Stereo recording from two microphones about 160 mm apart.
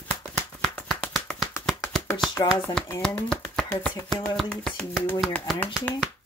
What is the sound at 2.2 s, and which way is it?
Speech, 25° left (ahead or behind).